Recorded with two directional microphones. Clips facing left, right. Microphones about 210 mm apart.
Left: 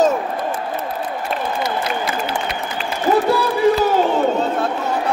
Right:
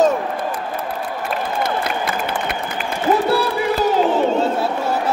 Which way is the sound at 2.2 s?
55° right (ahead or behind).